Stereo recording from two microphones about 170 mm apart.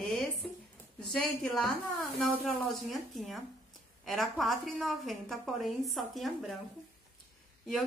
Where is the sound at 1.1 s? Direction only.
5° left (ahead or behind).